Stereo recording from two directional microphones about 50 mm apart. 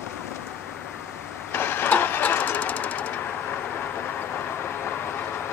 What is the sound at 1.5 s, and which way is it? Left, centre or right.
Vehicle, left.